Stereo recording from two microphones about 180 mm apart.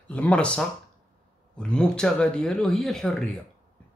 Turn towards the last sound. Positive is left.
turn(degrees=0)  # may be behind; listen again after turning